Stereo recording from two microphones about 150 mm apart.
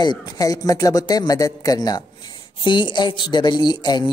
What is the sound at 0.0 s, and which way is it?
Speech, 30° left (ahead or behind).